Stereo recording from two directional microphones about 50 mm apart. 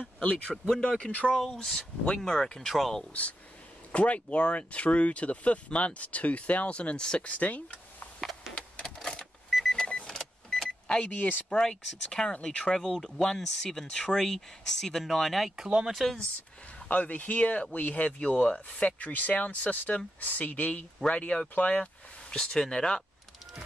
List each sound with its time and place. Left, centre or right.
0.0 s speech: left
0.8 s speech: centre
1.3 s speech: centre
3.1 s speech: left
8.8 s typewriter: centre
9.7 s vehicle: centre
11.0 s speech: left
11.5 s speech: centre
15.5 s speech: centre
15.9 s speech: centre
16.9 s speech: left